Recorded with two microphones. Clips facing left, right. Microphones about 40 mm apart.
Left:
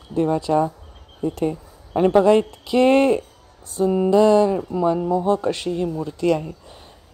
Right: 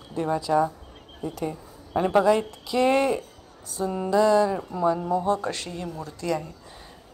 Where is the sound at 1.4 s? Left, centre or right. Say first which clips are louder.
Left 7 dB; left.